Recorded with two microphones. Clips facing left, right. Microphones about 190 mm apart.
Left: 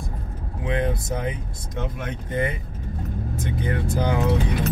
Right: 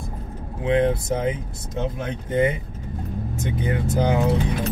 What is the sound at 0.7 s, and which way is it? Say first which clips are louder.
Speech: right 5 dB; 25° right (ahead or behind).